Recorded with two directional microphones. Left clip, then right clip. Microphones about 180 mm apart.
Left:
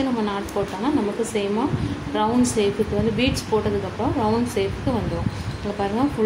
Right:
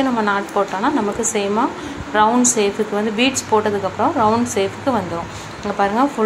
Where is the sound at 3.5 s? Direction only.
40° right (ahead or behind).